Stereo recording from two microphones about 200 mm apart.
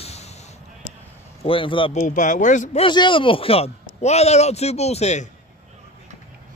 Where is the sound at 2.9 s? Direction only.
25° left (ahead or behind).